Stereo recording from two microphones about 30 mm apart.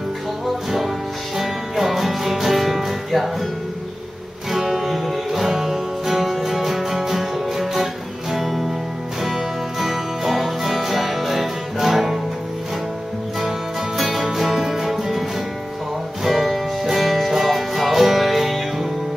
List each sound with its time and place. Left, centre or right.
0.7 s music: centre
4.5 s music: centre
14.0 s music: centre
16.3 s music: centre